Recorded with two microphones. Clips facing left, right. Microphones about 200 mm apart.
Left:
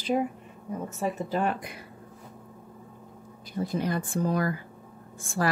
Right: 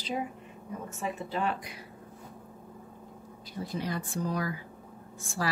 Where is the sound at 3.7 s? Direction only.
50° left (ahead or behind).